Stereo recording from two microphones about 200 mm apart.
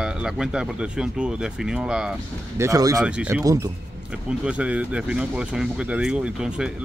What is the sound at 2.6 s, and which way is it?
Speech, 15° right (ahead or behind).